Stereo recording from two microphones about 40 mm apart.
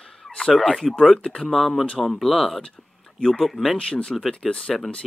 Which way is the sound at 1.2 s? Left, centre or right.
Left.